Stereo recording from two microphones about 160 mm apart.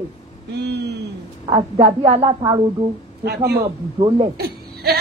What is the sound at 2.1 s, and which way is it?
Speech, 35° right (ahead or behind).